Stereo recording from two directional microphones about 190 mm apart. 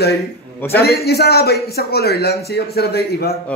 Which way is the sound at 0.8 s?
55° left (ahead or behind).